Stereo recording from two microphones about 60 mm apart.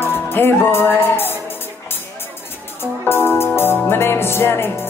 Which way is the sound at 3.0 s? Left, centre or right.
Left.